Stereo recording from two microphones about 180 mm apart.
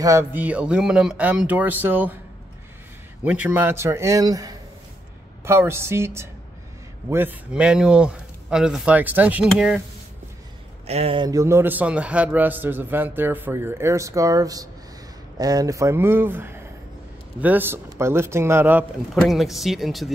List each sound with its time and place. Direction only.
0.0 s a man's voice: 15° right (ahead or behind)
3.3 s a man's voice: 10° right (ahead or behind)
10.9 s speech: 35° right (ahead or behind)
11.2 s a man's voice: 15° right (ahead or behind); by 20.1 s centre (ahead or behind)